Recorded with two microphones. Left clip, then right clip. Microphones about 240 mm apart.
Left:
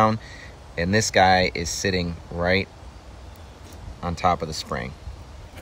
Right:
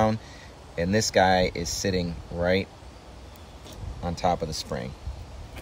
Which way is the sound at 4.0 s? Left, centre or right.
Centre.